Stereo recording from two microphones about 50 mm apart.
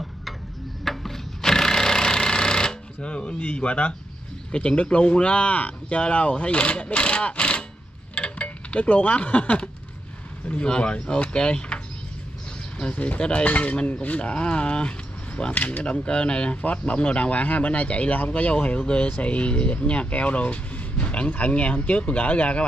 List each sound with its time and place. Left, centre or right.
0.8 s wood: centre; by 3.4 s left
3.4 s speech: left
8.1 s a sound: left
10.5 s speech: left
15.5 s speech: left